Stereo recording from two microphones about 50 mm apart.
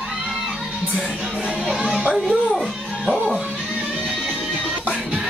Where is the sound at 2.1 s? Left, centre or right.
Centre.